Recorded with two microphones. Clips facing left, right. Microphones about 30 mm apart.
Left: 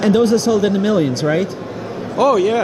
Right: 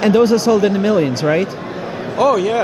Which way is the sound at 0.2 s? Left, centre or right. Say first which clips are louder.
Right 2 dB; right.